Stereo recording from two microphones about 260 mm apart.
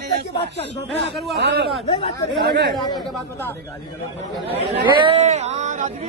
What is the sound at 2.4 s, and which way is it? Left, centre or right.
Speech, right.